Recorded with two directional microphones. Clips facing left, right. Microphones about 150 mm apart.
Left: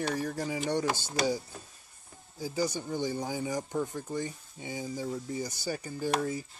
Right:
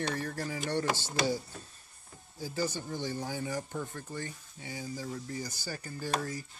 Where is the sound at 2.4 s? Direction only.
15° left (ahead or behind).